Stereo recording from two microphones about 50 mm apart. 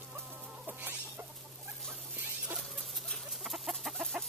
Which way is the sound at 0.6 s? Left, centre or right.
Right.